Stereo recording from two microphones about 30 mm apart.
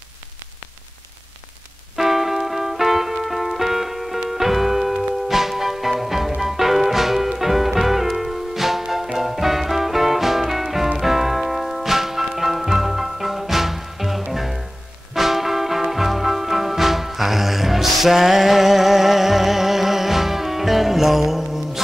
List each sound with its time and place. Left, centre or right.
2.0 s music: centre